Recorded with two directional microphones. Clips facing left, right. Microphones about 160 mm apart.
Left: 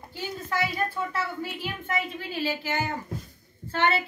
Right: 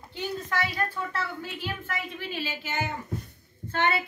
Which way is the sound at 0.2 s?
10° left (ahead or behind).